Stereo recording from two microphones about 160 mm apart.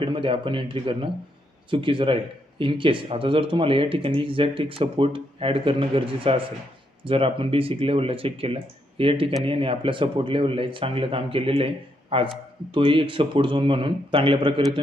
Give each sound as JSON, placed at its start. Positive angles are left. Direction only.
{"t": 0.0, "sound": "speech", "side_deg": -35}